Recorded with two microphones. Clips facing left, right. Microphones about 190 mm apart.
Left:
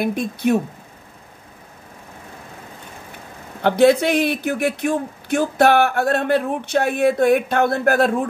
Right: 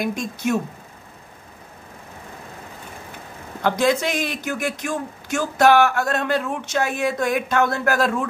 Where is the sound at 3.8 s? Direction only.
60° left (ahead or behind).